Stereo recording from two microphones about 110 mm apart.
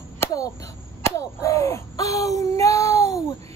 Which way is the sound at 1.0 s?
30° left (ahead or behind).